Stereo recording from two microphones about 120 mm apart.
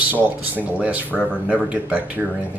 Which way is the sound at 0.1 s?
10° right (ahead or behind).